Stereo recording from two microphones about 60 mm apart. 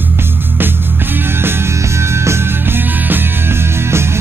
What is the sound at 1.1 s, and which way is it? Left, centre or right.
Music, right.